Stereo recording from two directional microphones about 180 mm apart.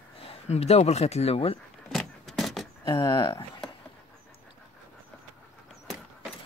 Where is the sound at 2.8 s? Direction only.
25° left (ahead or behind).